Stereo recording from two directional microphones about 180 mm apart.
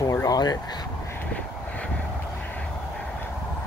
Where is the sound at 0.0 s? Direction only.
20° left (ahead or behind).